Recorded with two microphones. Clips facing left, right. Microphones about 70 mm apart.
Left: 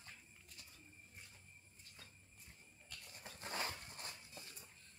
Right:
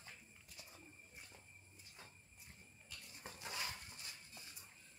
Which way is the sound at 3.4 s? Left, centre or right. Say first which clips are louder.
Left 3 dB; left.